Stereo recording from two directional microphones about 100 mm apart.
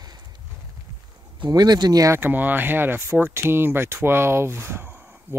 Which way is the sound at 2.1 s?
20° right (ahead or behind).